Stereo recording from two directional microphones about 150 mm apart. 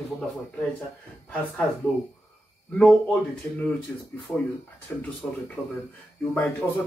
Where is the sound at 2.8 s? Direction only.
5° left (ahead or behind).